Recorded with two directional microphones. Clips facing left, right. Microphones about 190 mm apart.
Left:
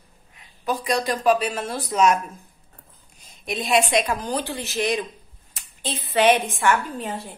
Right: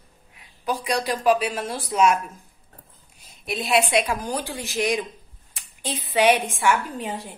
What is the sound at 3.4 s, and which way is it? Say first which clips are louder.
A woman's voice: left 1 dB; 5° right (ahead or behind).